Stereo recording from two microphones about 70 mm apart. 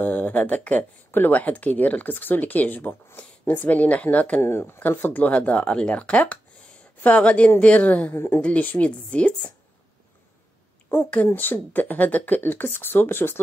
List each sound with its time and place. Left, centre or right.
0.0 s speech: left
4.4 s speech: left; by 9.5 s centre
10.9 s speech: left